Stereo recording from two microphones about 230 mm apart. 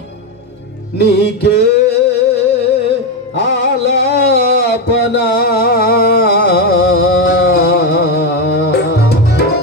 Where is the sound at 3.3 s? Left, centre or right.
Left.